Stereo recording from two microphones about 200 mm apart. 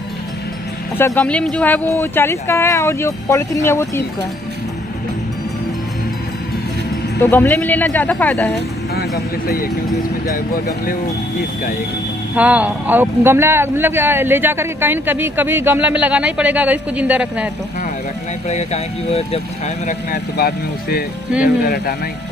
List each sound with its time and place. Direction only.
0.9 s speech: 10° left (ahead or behind)
7.2 s speech: 10° left (ahead or behind)
8.9 s speech: 50° left (ahead or behind)
12.4 s a man's voice: 5° right (ahead or behind)
18.5 s speech: 35° left (ahead or behind)
19.9 s speech: 45° left (ahead or behind)